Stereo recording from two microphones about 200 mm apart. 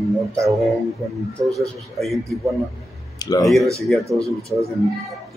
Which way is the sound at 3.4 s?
Centre (ahead or behind).